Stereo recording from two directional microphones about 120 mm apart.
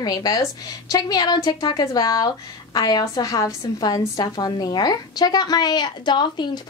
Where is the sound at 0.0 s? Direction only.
35° left (ahead or behind).